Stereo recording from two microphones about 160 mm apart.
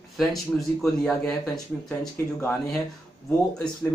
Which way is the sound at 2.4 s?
10° left (ahead or behind).